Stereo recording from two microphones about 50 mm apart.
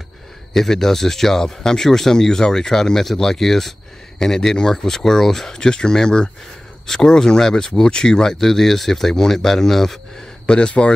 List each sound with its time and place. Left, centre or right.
0.5 s speech: centre
10.4 s speech: left